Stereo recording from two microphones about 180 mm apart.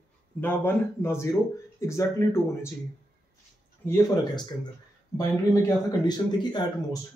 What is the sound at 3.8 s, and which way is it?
A man's voice, 20° left (ahead or behind).